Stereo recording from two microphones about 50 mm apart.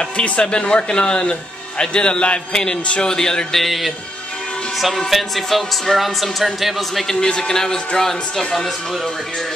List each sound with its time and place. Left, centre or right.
0.0 s speech: centre
3.6 s speech: centre
7.2 s speech: centre